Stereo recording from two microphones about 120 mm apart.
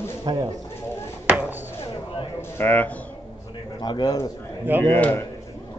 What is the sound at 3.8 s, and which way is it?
Speech, 35° left (ahead or behind).